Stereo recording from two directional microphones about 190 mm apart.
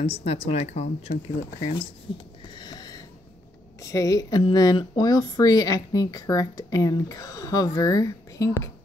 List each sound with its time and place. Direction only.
0.0 s speech: 30° left (ahead or behind)
2.5 s sniff: 20° left (ahead or behind)
3.8 s speech: 15° left (ahead or behind)